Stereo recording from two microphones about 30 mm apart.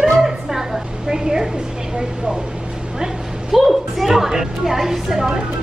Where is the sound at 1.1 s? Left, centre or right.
Right.